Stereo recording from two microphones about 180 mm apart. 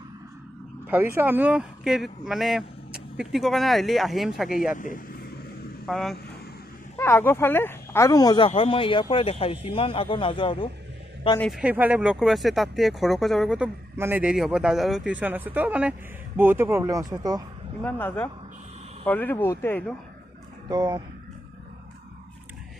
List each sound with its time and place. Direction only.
0.8 s speech: 10° right (ahead or behind)
4.7 s vehicle: 50° left (ahead or behind)
5.9 s speech: centre (ahead or behind)
7.0 s a man's voice: 10° left (ahead or behind); by 10.7 s 30° left (ahead or behind)
11.5 s speech: 10° right (ahead or behind)
17.8 s speech: 10° left (ahead or behind)
20.6 s speech: 25° right (ahead or behind)